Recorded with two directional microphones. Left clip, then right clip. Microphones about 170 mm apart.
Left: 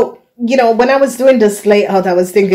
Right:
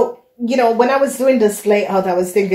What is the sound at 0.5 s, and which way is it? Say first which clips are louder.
A woman's voice: left 4 dB; 60° left (ahead or behind).